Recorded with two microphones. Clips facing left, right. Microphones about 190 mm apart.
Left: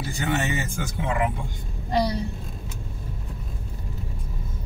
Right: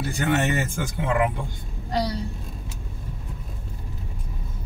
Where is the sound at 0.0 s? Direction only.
60° right (ahead or behind).